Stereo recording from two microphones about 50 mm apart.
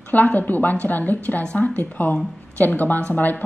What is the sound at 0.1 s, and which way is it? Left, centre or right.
A woman's voice, left.